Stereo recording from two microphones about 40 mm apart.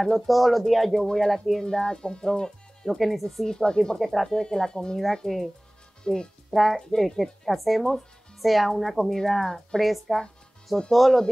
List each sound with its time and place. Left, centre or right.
0.0 s speech: centre
1.6 s speech: centre
3.0 s speech: centre
3.3 s speech: centre
4.0 s speech: centre
4.3 s speech: centre
6.5 s speech: centre
6.9 s speech: centre